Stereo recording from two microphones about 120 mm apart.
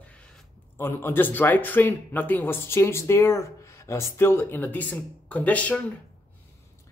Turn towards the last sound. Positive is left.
turn(degrees=10)  # may be behind; listen again after turning